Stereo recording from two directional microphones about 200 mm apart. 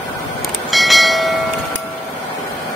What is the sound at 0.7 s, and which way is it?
Train, centre (ahead or behind).